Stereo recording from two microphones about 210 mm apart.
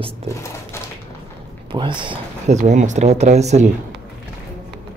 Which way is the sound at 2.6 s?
35° right (ahead or behind).